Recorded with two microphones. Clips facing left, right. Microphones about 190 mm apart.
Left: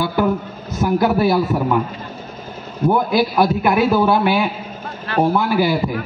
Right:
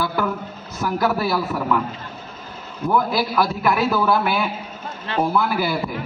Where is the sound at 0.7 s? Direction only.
20° left (ahead or behind).